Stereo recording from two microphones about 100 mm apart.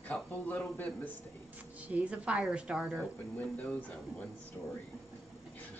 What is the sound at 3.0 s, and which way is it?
Speech, 15° left (ahead or behind).